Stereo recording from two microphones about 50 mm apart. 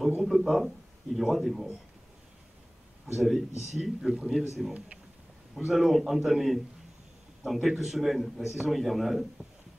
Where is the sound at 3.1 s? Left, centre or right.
Centre.